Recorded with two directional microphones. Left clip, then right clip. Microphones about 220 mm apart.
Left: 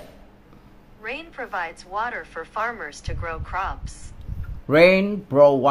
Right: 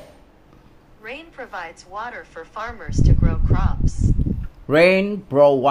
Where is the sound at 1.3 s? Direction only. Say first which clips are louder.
Left 5 dB; 5° left (ahead or behind).